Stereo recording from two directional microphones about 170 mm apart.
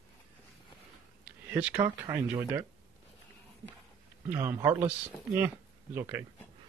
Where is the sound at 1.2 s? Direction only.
10° right (ahead or behind).